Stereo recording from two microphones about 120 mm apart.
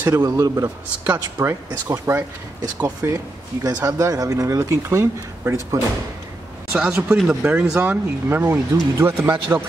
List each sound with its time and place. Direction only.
0.0 s speech: 25° right (ahead or behind)
3.6 s speech: 30° right (ahead or behind)
6.7 s speech: 5° right (ahead or behind)